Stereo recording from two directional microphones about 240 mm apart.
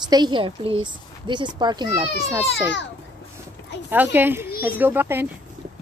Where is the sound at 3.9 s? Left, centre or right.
Centre.